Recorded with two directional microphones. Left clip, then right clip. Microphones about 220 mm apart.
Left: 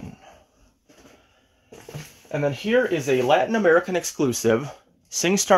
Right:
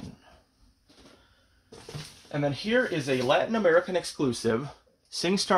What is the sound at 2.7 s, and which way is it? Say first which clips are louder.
Speech: left 6 dB; 40° left (ahead or behind).